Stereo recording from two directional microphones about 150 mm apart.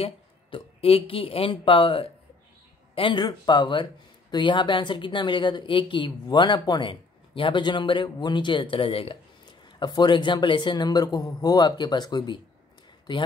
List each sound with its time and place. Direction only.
0.0 s speech: 35° left (ahead or behind)